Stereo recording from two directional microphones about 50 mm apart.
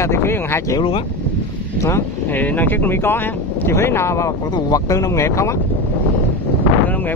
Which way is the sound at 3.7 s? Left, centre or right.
Left.